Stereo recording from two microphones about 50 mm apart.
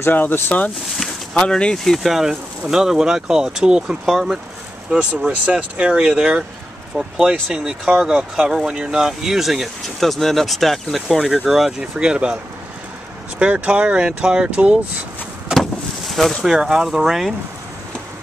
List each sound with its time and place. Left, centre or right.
0.1 s speech: left
1.3 s speech: centre
2.0 s speech: centre
5.3 s speech: right
5.9 s speech: centre
12.0 s speech: centre
13.4 s speech: right
15.5 s vehicle: centre
16.4 s speech: centre